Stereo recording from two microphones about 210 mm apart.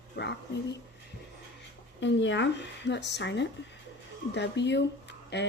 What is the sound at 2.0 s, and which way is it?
Speech, 60° left (ahead or behind).